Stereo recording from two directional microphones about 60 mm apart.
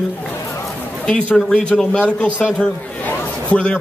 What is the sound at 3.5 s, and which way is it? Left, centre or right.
Speech, left.